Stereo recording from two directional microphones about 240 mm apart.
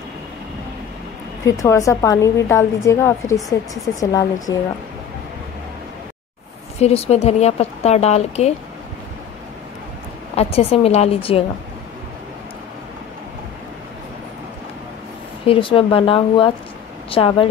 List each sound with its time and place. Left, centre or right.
1.4 s a woman's voice: centre
6.8 s speech: left
10.3 s speech: left
15.4 s speech: left